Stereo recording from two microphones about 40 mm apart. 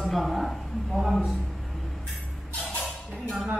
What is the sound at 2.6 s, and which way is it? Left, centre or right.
Music, left.